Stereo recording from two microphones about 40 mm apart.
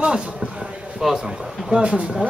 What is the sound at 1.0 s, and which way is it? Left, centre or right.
Speech, centre.